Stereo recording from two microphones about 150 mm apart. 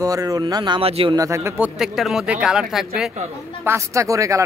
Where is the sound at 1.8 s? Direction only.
5° right (ahead or behind).